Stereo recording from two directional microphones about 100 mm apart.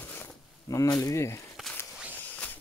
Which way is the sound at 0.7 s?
35° left (ahead or behind).